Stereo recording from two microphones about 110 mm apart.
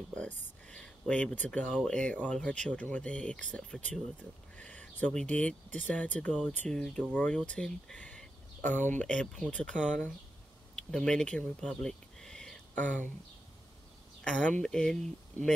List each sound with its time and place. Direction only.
0.1 s speech: 10° left (ahead or behind)
10.8 s speech: 5° left (ahead or behind)
12.7 s speech: 15° left (ahead or behind)
14.2 s speech: 10° left (ahead or behind)